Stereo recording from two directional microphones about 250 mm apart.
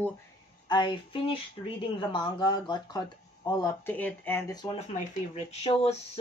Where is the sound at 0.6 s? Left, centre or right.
Centre.